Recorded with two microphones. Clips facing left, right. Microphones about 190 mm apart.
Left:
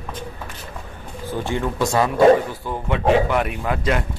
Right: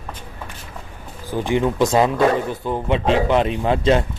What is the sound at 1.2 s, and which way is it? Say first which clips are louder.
A man's voice: right 4 dB; 15° right (ahead or behind).